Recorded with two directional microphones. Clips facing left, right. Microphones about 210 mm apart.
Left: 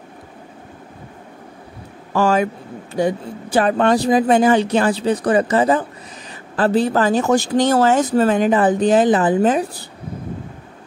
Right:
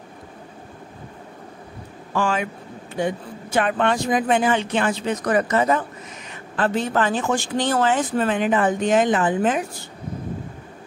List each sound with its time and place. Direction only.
2.1 s speech: 40° left (ahead or behind)